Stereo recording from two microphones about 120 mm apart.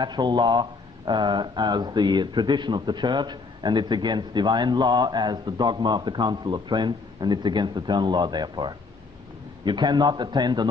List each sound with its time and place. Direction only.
0.0 s speech: 35° right (ahead or behind)